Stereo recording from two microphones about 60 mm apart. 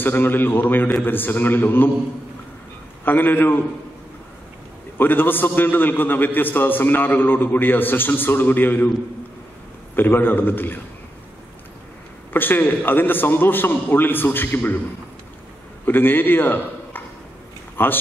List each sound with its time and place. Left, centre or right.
0.0 s a man's voice: left
3.1 s a man's voice: left
4.9 s a man's voice: left
9.9 s a man's voice: left
12.3 s a man's voice: left
15.8 s a man's voice: left